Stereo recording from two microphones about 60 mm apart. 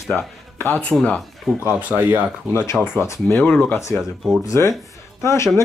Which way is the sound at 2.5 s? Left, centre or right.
Left.